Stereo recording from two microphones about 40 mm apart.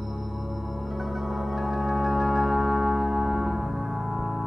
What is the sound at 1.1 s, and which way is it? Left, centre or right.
Music, centre.